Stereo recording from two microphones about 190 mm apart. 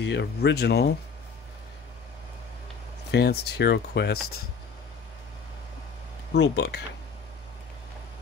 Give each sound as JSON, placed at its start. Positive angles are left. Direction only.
{"t": 0.0, "sound": "speech", "side_deg": 65}
{"t": 3.1, "sound": "speech", "side_deg": 60}
{"t": 6.3, "sound": "speech", "side_deg": 65}